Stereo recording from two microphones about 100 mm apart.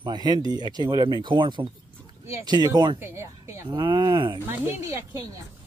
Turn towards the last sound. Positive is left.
turn(degrees=-35)  # may be behind; listen again after turning